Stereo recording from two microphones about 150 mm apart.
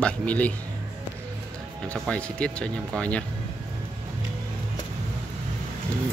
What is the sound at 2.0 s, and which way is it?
Speech, 5° left (ahead or behind).